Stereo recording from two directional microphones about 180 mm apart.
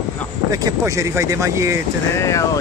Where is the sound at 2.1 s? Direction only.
15° left (ahead or behind).